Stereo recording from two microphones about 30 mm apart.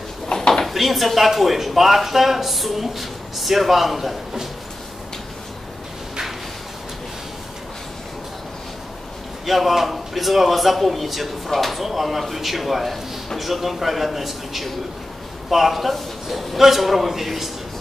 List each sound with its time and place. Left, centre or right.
0.3 s a sound: left
0.7 s speech: centre
9.5 s speech: centre